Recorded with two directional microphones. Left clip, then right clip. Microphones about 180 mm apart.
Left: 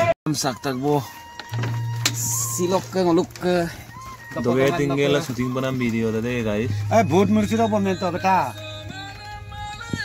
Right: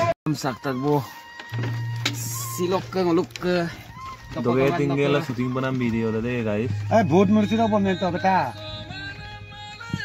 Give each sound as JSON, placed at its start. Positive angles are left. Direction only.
{"t": 0.4, "sound": "speech", "side_deg": -5}
{"t": 2.3, "sound": "speech", "side_deg": 50}
{"t": 3.3, "sound": "speech", "side_deg": 25}
{"t": 4.4, "sound": "speech", "side_deg": 0}
{"t": 6.9, "sound": "speech", "side_deg": -50}
{"t": 7.3, "sound": "a man's voice", "side_deg": -30}